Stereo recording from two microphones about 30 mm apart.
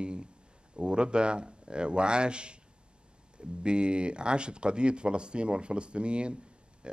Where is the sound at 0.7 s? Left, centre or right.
Right.